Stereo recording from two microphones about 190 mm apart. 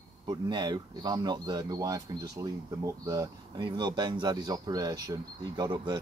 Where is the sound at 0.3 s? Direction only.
20° right (ahead or behind).